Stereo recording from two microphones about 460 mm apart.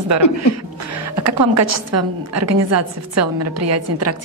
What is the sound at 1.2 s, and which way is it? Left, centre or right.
A woman's voice, right.